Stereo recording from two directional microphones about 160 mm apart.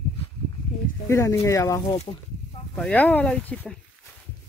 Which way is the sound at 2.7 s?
5° left (ahead or behind).